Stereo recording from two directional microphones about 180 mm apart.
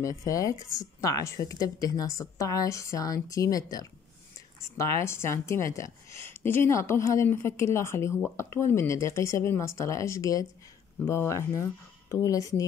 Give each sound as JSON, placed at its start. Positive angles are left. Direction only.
{"t": 0.0, "sound": "speech", "side_deg": 20}